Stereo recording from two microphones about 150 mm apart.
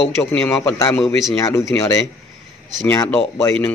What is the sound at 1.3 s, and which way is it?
Speech, 20° left (ahead or behind).